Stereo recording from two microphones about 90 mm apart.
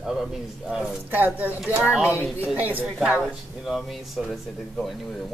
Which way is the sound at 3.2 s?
Centre (ahead or behind).